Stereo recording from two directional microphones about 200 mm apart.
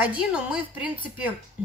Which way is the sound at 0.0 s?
5° right (ahead or behind).